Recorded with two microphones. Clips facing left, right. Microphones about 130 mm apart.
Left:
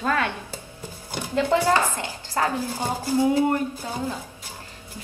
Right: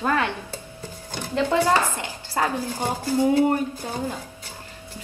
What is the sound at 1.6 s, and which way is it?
Speech, 15° right (ahead or behind).